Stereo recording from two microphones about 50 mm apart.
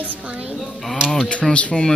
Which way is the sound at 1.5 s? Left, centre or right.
Centre.